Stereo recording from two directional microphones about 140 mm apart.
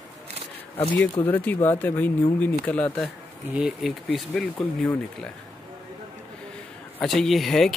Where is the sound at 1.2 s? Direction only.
15° left (ahead or behind).